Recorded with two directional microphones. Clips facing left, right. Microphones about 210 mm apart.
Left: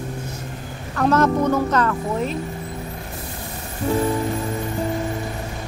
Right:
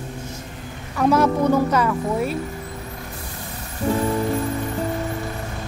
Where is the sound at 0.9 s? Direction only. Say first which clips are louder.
Even; 10° right (ahead or behind).